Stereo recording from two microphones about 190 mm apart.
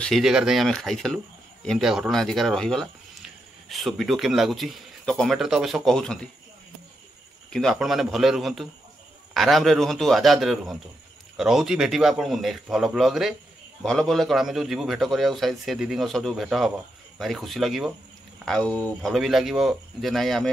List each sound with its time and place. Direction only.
0.0 s speech: centre (ahead or behind)
7.5 s speech: centre (ahead or behind)